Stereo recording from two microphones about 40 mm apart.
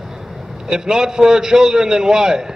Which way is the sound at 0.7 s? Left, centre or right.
Centre.